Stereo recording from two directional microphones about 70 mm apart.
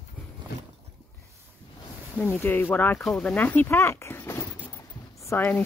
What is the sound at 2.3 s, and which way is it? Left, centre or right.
A woman's voice, left.